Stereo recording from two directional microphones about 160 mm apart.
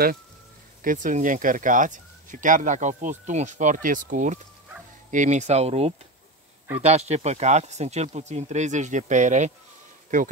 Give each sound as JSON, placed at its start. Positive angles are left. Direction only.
{"t": 0.8, "sound": "speech", "side_deg": -55}